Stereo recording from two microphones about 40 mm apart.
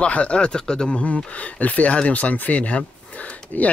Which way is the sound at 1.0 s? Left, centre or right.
Left.